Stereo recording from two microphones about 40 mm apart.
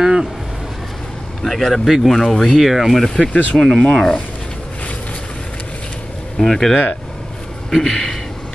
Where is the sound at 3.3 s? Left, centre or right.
Left.